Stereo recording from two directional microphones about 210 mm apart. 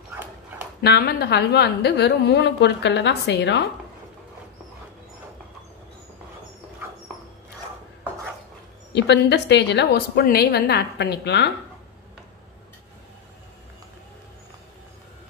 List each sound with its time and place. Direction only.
0.8 s a woman's voice: 50° left (ahead or behind)
8.9 s a woman's voice: 55° left (ahead or behind)